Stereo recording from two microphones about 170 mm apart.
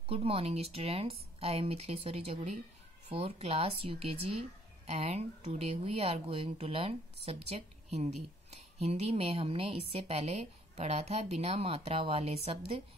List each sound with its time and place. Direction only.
0.0 s speech: 35° right (ahead or behind)